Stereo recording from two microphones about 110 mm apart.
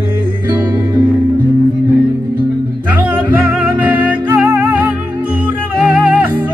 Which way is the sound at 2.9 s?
15° right (ahead or behind).